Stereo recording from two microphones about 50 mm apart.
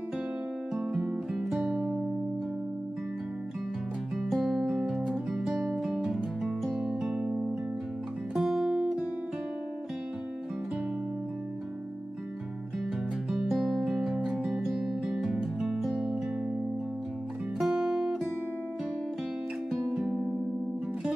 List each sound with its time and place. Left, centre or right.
0.7 s music: centre
4.3 s music: centre
4.6 s music: centre
5.4 s music: centre
8.4 s music: centre
13.7 s music: centre
14.2 s music: centre
17.6 s music: centre
19.9 s music: centre